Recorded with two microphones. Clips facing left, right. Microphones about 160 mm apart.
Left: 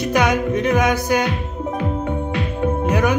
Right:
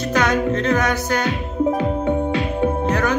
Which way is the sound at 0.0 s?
10° left (ahead or behind).